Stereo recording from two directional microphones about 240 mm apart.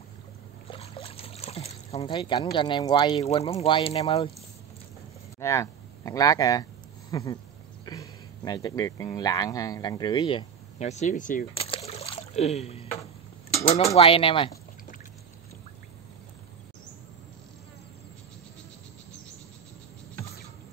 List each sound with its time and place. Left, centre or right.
0.7 s trickle: left
2.5 s speech: centre
5.4 s speech: centre
13.9 s speech: left